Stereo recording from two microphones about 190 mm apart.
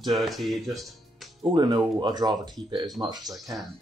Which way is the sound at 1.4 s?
25° right (ahead or behind).